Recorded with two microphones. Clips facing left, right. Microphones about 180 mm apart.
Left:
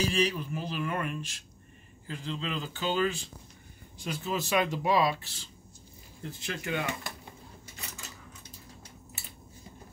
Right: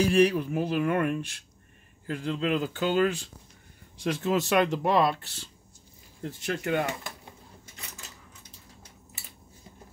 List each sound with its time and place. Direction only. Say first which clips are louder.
0.0 s speech: right 7 dB; 60° right (ahead or behind)
4.0 s speech: right 7 dB; 75° right (ahead or behind)
6.4 s speech: right 6 dB; 50° right (ahead or behind)